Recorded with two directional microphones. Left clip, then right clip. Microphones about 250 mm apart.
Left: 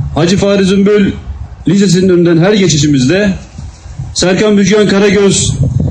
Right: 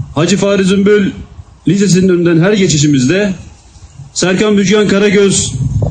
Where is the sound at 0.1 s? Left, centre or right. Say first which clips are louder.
Left 1 dB; right.